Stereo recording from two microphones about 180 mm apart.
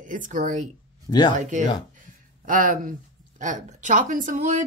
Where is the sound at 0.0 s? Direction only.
45° right (ahead or behind).